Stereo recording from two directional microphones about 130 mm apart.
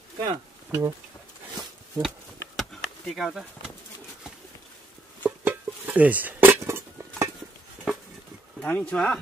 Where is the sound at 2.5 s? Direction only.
Centre (ahead or behind).